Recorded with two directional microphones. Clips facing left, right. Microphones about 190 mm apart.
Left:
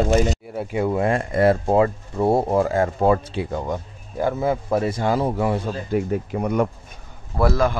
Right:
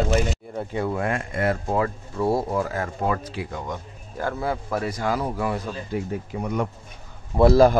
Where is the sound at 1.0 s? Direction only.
35° left (ahead or behind).